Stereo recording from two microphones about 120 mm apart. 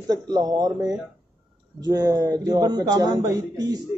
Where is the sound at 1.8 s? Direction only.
30° right (ahead or behind).